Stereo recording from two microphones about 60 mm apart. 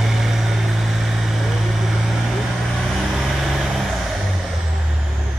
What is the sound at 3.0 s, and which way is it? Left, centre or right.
Vehicle, centre.